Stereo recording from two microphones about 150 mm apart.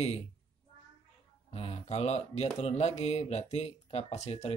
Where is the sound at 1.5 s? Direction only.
45° left (ahead or behind).